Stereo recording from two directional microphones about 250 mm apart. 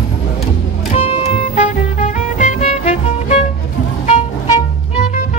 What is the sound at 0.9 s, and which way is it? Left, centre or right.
Music, left.